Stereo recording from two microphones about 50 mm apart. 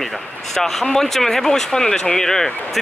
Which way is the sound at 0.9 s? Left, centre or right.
Centre.